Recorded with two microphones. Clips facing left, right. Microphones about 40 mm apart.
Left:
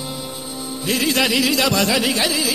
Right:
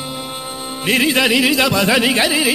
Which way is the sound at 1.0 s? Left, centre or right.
Right.